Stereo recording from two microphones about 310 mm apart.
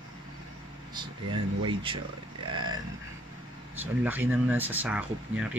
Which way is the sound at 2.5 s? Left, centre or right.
Centre.